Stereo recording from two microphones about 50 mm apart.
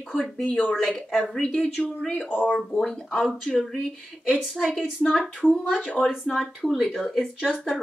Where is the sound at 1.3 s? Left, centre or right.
Centre.